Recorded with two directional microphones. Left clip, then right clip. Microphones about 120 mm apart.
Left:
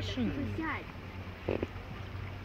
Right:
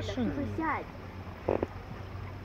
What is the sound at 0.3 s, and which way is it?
Speech, 25° left (ahead or behind).